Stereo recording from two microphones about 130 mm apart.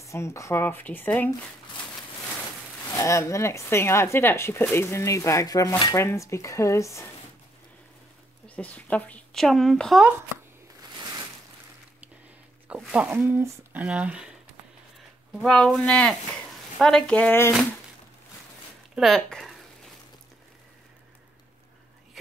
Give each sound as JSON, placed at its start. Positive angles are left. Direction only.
{"t": 0.0, "sound": "a woman's voice", "side_deg": 20}
{"t": 2.9, "sound": "speech", "side_deg": 25}
{"t": 8.5, "sound": "a woman's voice", "side_deg": 10}
{"t": 10.8, "sound": "a sound", "side_deg": -30}
{"t": 12.6, "sound": "speech", "side_deg": -5}
{"t": 15.4, "sound": "a woman's voice", "side_deg": 5}
{"t": 18.9, "sound": "speech", "side_deg": 0}